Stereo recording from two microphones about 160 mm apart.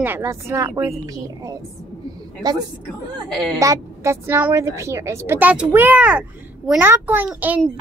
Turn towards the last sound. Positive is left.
turn(degrees=-10)  # may be behind; listen again after turning